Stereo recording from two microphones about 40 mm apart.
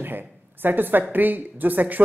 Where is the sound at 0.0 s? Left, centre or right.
Right.